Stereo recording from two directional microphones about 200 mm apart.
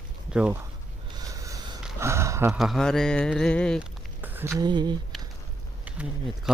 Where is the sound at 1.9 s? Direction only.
15° right (ahead or behind).